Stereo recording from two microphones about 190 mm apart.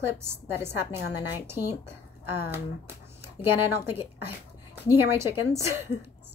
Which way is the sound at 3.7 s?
10° right (ahead or behind).